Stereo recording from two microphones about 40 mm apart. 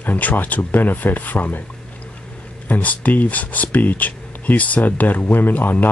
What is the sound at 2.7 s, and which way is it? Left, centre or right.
Speech, left.